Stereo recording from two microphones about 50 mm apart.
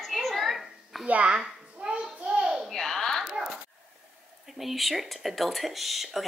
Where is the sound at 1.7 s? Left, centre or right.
Centre.